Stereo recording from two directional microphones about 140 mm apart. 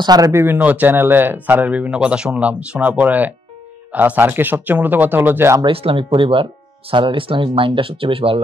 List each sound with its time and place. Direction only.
0.0 s speech: 25° right (ahead or behind)
5.6 s speech: 40° right (ahead or behind)